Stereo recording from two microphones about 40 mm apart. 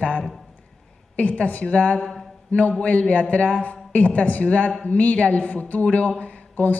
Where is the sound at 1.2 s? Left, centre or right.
Left.